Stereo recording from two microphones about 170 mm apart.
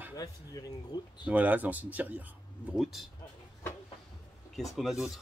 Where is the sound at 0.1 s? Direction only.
20° left (ahead or behind).